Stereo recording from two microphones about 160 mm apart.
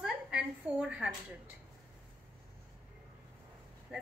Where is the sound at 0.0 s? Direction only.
5° right (ahead or behind).